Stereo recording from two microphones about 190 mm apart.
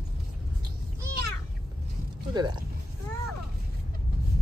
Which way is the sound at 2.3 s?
25° right (ahead or behind).